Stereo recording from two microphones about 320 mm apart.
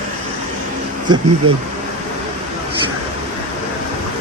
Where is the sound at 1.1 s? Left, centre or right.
Centre.